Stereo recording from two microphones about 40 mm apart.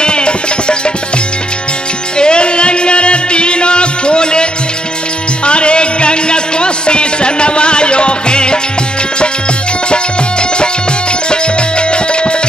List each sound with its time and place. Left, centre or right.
0.0 s music: left
2.1 s music: left
11.9 s music: left